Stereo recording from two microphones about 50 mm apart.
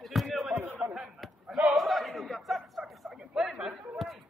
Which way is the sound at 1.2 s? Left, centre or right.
Centre.